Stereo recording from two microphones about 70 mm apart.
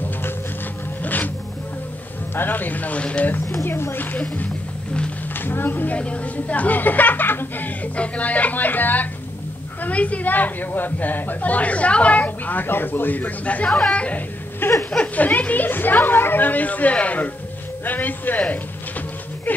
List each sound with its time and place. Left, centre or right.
1.0 s music: left
2.3 s a woman's voice: left
3.6 s a woman's voice: left
5.3 s a woman's voice: left
13.7 s speech: centre
14.6 s a sound: left
15.1 s a woman's voice: left
18.4 s a sound: left